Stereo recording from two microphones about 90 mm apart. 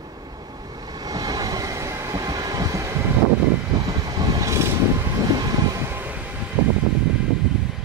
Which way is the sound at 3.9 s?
45° right (ahead or behind).